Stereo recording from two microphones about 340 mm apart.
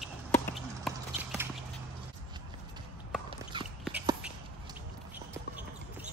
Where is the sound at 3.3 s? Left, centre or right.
Centre.